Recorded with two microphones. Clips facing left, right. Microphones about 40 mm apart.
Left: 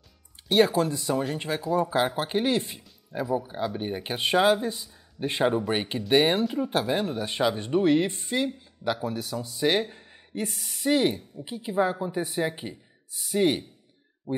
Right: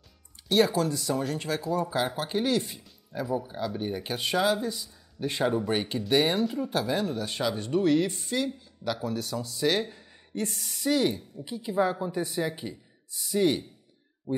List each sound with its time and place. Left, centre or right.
0.5 s speech: left
3.1 s speech: centre
3.4 s a woman's voice: left
10.8 s speech: left
11.7 s a woman's voice: centre
14.3 s speech: centre